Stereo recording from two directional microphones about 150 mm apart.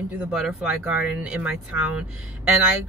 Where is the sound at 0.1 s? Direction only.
5° right (ahead or behind).